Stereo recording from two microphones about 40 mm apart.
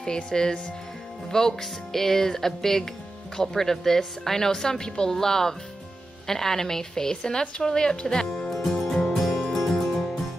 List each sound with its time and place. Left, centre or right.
0.0 s speech: centre
8.3 s music: centre